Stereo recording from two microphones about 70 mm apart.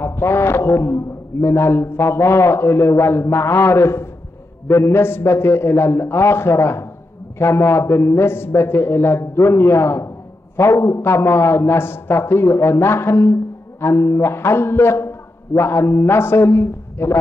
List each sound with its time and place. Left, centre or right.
0.0 s a man's voice: left